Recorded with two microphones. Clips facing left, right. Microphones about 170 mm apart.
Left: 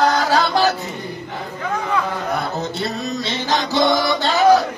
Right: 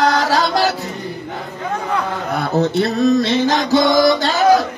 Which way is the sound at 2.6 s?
60° right (ahead or behind).